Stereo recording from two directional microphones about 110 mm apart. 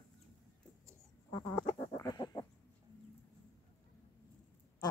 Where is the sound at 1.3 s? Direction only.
35° left (ahead or behind).